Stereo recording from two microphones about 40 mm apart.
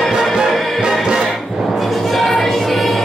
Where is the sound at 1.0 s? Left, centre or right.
Centre.